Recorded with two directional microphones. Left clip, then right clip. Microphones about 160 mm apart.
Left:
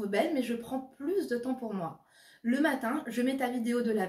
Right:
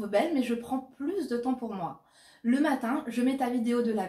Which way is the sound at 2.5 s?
15° left (ahead or behind).